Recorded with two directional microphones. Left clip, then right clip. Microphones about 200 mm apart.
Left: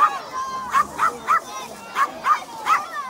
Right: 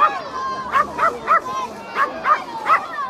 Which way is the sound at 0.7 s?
45° left (ahead or behind).